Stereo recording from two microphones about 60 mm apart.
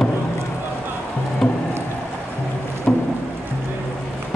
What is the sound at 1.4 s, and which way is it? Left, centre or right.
Music, centre.